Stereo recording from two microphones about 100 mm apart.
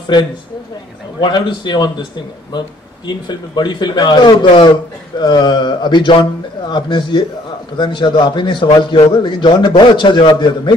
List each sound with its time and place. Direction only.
1.2 s speech: 50° left (ahead or behind)
3.1 s speech: 45° left (ahead or behind)